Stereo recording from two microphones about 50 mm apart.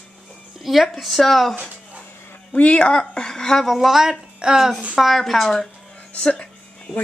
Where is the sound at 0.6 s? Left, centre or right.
Centre.